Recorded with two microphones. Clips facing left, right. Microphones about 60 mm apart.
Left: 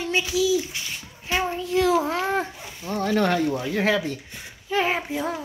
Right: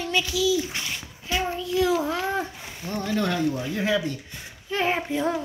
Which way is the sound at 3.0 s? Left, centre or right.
Left.